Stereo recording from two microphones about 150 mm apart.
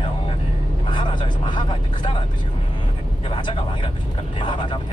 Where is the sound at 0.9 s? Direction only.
30° left (ahead or behind).